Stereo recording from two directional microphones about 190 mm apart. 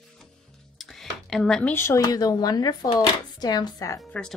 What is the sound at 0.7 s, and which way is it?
Speech, centre (ahead or behind).